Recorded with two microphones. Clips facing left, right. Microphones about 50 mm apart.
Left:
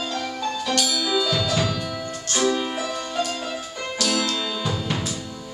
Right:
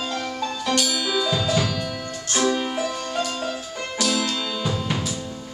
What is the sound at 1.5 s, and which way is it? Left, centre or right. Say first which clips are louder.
Music: even; centre.